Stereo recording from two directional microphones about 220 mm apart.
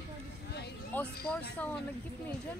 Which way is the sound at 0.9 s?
10° left (ahead or behind).